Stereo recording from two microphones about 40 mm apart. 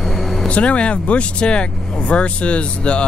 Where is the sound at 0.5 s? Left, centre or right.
Left.